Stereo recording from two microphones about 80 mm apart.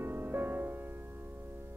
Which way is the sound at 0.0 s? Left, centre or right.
Right.